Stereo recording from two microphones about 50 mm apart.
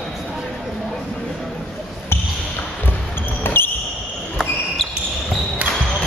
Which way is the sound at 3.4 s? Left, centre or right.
Left.